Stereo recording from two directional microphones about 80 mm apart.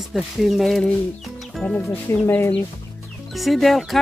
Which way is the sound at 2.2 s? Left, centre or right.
Left.